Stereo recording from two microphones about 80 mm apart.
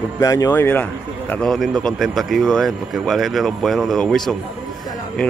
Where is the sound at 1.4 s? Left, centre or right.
Centre.